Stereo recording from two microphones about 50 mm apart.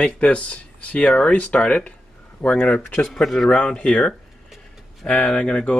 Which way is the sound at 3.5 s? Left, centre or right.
Left.